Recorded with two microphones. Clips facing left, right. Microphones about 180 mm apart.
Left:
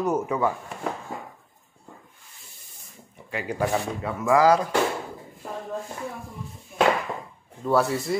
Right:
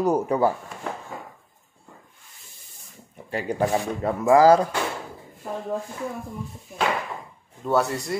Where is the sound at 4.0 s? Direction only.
40° right (ahead or behind).